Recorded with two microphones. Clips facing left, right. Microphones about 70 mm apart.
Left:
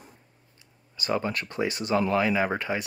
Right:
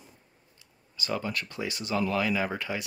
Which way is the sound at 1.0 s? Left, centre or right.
Left.